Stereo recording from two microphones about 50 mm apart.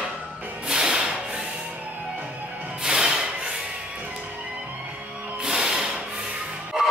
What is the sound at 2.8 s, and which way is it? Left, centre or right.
Music, centre.